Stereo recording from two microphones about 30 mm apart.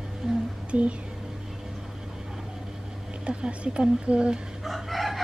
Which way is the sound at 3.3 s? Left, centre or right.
Right.